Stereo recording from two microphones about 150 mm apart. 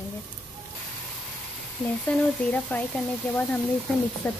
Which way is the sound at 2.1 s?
10° left (ahead or behind).